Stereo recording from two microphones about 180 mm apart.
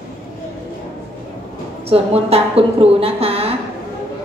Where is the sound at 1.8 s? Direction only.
35° right (ahead or behind).